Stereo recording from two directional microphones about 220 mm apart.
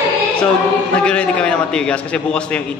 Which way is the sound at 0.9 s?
5° left (ahead or behind).